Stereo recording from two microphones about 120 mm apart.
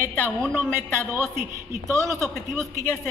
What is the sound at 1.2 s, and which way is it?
A man's voice, 25° right (ahead or behind).